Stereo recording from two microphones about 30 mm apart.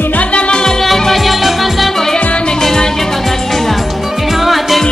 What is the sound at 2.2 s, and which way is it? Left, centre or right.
Music, left.